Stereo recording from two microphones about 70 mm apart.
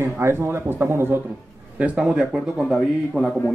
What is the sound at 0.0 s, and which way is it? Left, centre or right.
Speech, right.